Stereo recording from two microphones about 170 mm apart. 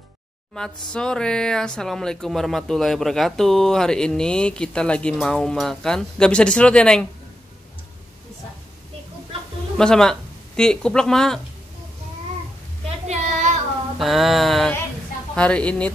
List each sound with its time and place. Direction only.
0.9 s speech: 5° left (ahead or behind)
9.8 s speech: 5° left (ahead or behind)
13.0 s a sound: 40° right (ahead or behind)
13.9 s speech: centre (ahead or behind)